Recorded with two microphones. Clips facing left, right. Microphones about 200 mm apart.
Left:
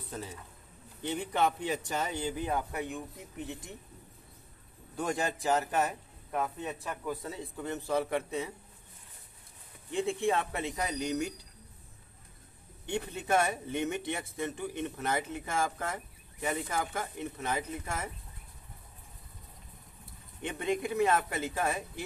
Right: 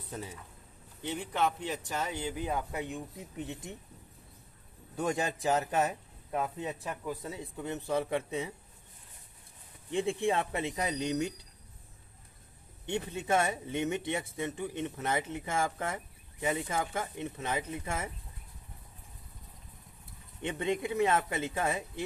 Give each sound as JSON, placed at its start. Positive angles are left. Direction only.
{"t": 1.0, "sound": "speech", "side_deg": 0}
{"t": 2.7, "sound": "speech", "side_deg": -20}
{"t": 5.0, "sound": "speech", "side_deg": -20}
{"t": 9.9, "sound": "speech", "side_deg": -25}
{"t": 12.8, "sound": "speech", "side_deg": -20}
{"t": 20.4, "sound": "speech", "side_deg": -25}